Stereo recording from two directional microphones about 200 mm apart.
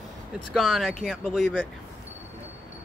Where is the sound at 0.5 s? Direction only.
Centre (ahead or behind).